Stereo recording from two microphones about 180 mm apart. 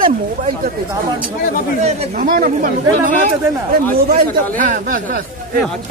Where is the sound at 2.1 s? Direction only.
55° right (ahead or behind).